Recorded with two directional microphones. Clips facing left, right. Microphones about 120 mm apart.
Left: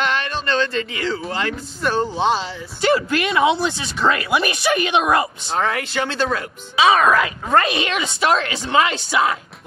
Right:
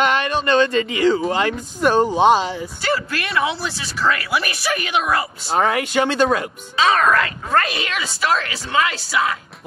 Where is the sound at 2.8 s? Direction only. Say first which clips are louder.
Left 7 dB; 20° left (ahead or behind).